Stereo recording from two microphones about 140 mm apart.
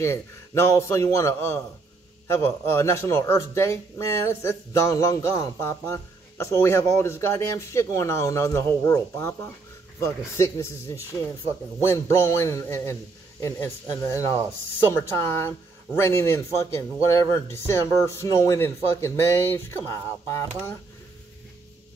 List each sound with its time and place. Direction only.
0.0 s speech: 20° left (ahead or behind)